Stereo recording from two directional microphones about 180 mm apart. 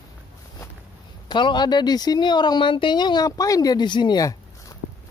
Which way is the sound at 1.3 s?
25° left (ahead or behind).